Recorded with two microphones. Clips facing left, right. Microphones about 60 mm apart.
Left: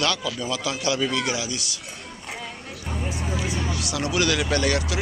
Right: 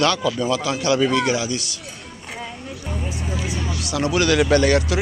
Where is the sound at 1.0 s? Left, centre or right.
Right.